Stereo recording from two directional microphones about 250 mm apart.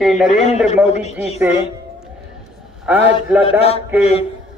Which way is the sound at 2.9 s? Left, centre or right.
Centre.